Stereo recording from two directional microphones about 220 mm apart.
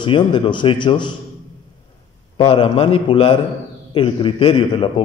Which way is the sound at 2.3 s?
25° left (ahead or behind).